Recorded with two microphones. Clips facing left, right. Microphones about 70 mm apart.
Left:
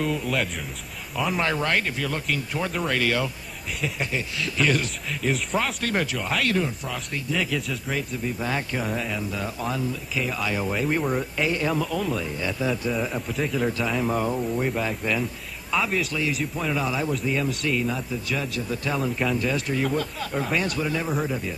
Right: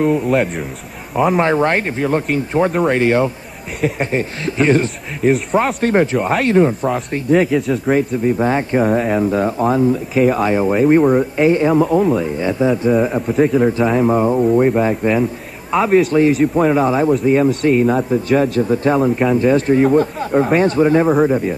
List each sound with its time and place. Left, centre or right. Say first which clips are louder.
0.0 s speech: right 11 dB; right
1.4 s speech: right 9 dB; right
10.5 s speech: right 13 dB; right
15.7 s speech: right 13 dB; right